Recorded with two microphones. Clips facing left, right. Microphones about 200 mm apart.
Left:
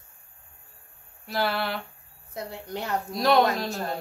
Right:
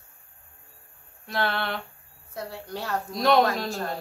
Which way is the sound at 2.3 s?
20° left (ahead or behind).